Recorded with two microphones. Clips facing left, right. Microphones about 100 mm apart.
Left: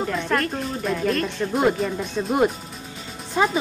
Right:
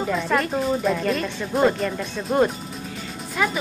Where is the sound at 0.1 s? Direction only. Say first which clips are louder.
Right 2 dB; centre (ahead or behind).